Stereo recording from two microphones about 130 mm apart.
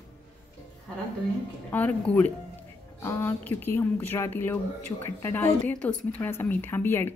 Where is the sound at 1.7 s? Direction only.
10° left (ahead or behind).